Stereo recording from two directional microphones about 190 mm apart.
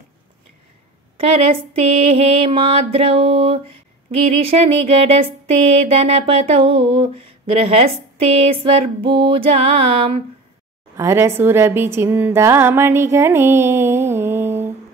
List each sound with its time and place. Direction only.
1.1 s a sound: 30° right (ahead or behind)
4.4 s speech: 30° right (ahead or behind)
11.0 s a woman's voice: 15° right (ahead or behind)